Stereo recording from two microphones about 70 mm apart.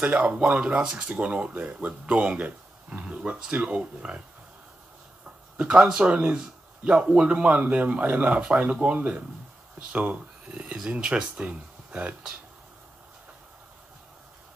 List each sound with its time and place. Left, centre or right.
0.0 s speech: centre
5.6 s speech: centre